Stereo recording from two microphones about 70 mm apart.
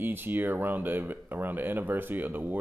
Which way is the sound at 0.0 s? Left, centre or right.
Right.